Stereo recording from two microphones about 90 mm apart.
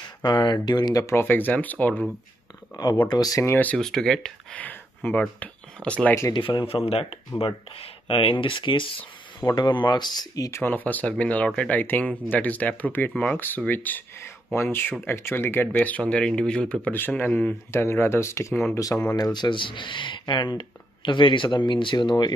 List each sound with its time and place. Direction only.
0.4 s speech: 55° left (ahead or behind)
1.0 s speech: 25° left (ahead or behind)
2.7 s speech: 50° left (ahead or behind)
3.4 s speech: 20° left (ahead or behind)
3.7 s speech: 5° left (ahead or behind)
4.6 s a sound: 15° left (ahead or behind)
5.4 s speech: 15° left (ahead or behind)
6.3 s speech: 65° left (ahead or behind)
6.9 s speech: 90° left; by 10.5 s 45° left (ahead or behind)
10.5 s speech: 20° left (ahead or behind)
17.6 s speech: 25° left (ahead or behind)
19.1 s speech: 50° left (ahead or behind)